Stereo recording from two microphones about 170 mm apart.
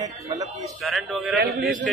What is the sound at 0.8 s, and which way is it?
Speech, centre (ahead or behind).